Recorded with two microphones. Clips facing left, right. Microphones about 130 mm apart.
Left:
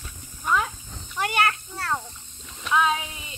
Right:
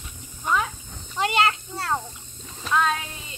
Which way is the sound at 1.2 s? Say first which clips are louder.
Right 2 dB; 20° right (ahead or behind).